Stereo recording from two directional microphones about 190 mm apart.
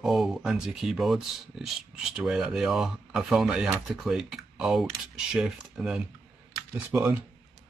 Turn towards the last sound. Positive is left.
turn(degrees=-10)  # may be behind; listen again after turning